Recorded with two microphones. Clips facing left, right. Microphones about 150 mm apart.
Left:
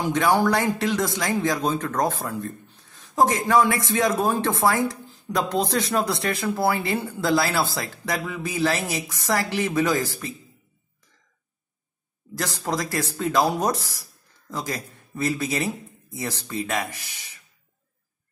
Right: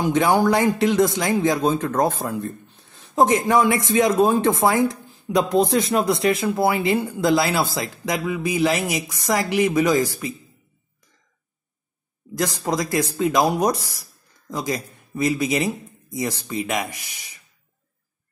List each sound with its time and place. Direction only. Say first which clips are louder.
0.0 s speech: right 3 dB; 20° right (ahead or behind)
12.4 s speech: right 4 dB; 15° right (ahead or behind)